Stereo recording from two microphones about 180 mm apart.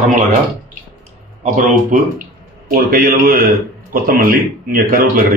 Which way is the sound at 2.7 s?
50° right (ahead or behind).